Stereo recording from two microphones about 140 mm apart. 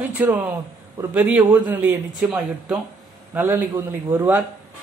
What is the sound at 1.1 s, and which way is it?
Speech, 10° right (ahead or behind).